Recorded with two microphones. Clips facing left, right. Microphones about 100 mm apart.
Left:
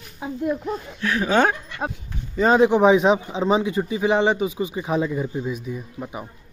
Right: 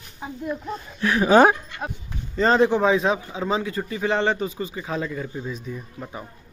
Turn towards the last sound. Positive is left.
turn(degrees=10)  # may be behind; listen again after turning